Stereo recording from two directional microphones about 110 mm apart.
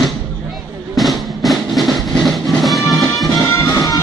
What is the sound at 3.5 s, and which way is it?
Music, 30° left (ahead or behind).